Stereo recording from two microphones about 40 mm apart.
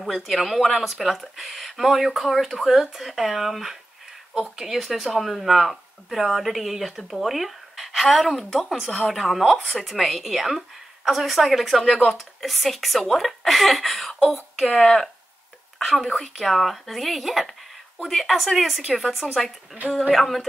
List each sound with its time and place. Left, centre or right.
0.0 s speech: centre
8.6 s speech: centre
8.9 s speech: centre
14.7 s speech: centre
15.8 s speech: centre
16.2 s speech: centre